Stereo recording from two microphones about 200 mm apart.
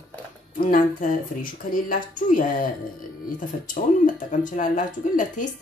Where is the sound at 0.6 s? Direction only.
45° left (ahead or behind).